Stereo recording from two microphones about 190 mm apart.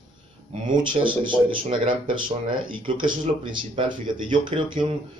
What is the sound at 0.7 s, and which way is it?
Speech, 25° right (ahead or behind).